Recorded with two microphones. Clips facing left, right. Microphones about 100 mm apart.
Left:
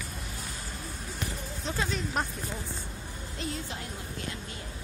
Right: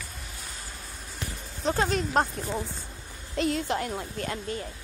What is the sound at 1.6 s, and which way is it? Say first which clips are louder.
Speech: right 7 dB; 45° right (ahead or behind).